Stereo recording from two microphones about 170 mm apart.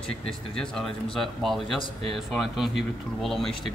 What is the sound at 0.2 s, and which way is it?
A man's voice, 5° left (ahead or behind).